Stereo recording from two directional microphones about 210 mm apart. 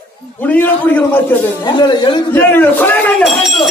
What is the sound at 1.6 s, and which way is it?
Speech, 20° left (ahead or behind).